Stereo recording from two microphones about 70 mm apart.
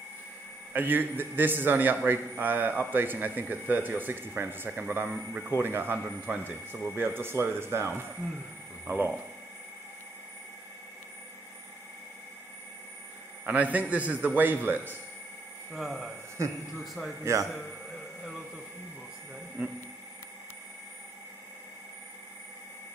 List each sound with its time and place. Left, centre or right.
0.7 s a man's voice: right
13.5 s a man's voice: right
15.7 s a man's voice: centre
17.2 s a man's voice: right
19.6 s a man's voice: centre